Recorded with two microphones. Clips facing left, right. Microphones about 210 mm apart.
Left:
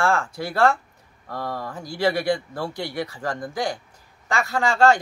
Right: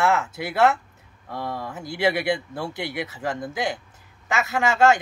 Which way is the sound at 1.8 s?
20° right (ahead or behind).